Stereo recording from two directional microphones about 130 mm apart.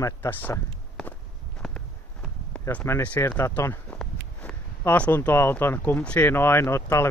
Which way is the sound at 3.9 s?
5° left (ahead or behind).